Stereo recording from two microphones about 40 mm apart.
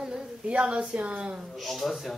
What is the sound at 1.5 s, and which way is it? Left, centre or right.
Speech, centre.